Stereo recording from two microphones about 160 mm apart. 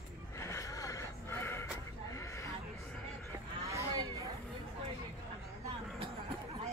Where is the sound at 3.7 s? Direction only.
20° right (ahead or behind).